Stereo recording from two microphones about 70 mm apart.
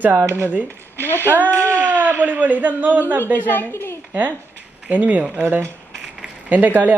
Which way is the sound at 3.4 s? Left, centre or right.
Left.